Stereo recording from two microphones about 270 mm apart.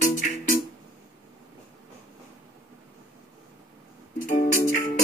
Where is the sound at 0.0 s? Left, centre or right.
Left.